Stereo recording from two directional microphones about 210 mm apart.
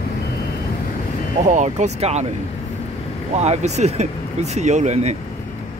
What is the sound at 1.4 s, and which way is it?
Speech, 35° right (ahead or behind).